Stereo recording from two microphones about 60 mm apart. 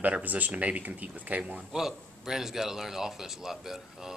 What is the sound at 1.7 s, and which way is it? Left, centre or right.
A man's voice, centre.